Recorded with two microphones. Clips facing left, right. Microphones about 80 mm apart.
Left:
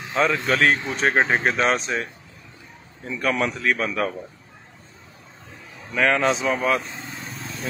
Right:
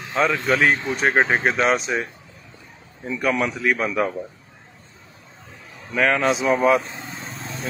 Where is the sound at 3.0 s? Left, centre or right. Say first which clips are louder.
Right 1 dB; centre.